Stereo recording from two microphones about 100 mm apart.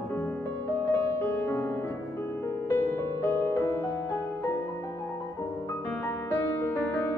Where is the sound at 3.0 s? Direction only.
25° left (ahead or behind).